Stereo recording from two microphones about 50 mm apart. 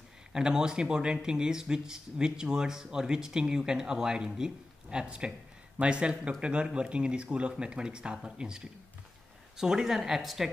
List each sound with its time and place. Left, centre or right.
0.3 s speech: centre